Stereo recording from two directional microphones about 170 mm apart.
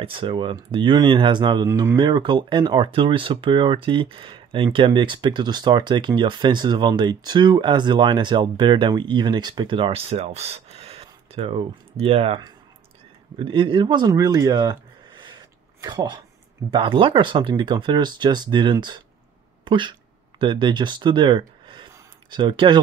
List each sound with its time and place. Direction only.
0.0 s speech: 30° right (ahead or behind)